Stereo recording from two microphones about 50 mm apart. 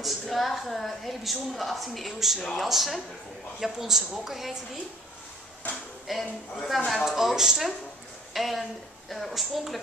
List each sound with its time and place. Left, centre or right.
0.0 s a woman's voice: centre
5.6 s speech: left
6.1 s a woman's voice: centre